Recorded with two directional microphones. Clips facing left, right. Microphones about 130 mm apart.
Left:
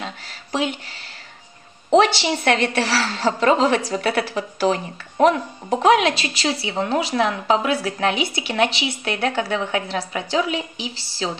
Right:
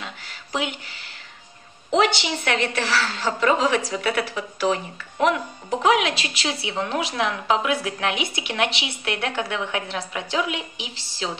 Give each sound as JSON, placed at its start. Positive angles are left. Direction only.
{"t": 1.9, "sound": "a woman's voice", "side_deg": 35}